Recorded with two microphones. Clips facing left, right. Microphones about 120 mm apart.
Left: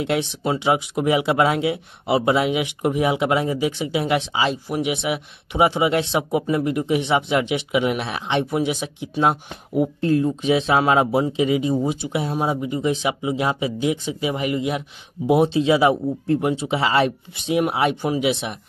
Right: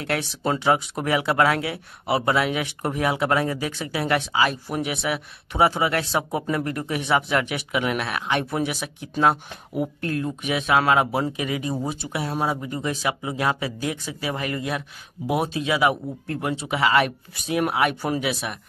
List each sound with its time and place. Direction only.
0.0 s speech: 20° left (ahead or behind)